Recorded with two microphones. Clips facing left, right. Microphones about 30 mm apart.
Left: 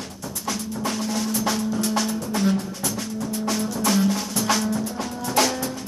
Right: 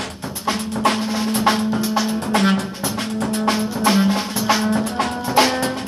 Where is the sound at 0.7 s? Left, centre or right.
Right.